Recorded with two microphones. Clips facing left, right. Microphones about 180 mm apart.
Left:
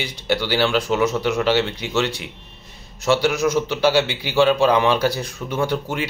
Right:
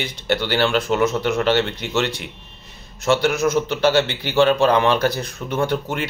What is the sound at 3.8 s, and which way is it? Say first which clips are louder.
Speech: even; 10° left (ahead or behind).